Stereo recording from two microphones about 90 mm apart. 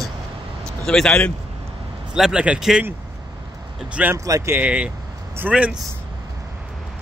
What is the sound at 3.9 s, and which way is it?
Speech, 15° right (ahead or behind).